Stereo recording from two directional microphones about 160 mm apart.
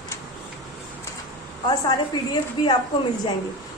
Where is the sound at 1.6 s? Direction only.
25° left (ahead or behind).